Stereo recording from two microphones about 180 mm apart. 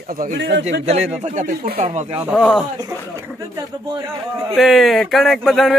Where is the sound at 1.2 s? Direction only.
40° right (ahead or behind).